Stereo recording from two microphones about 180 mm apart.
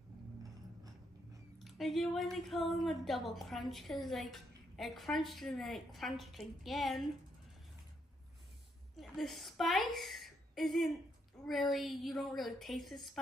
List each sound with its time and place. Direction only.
1.6 s a woman's voice: centre (ahead or behind)
8.9 s a woman's voice: centre (ahead or behind)